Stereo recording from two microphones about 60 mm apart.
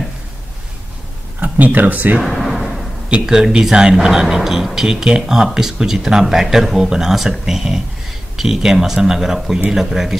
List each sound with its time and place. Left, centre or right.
1.4 s speech: right
2.1 s a sound: centre
3.1 s speech: centre